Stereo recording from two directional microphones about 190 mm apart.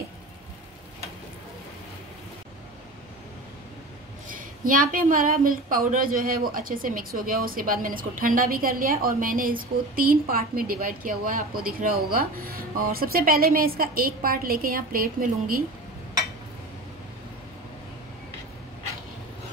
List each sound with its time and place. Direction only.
4.3 s a woman's voice: 45° right (ahead or behind)